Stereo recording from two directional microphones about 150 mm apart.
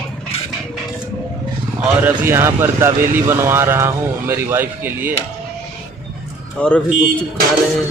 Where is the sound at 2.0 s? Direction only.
15° right (ahead or behind).